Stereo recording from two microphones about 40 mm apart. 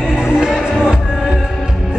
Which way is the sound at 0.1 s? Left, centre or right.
Centre.